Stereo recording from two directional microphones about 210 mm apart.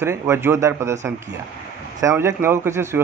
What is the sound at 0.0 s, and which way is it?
Speech, 10° right (ahead or behind).